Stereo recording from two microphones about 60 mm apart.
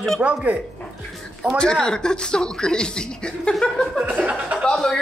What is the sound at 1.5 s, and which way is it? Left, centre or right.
Speech, centre.